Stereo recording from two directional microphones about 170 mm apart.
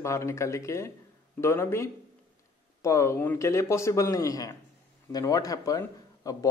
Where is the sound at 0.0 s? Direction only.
15° left (ahead or behind).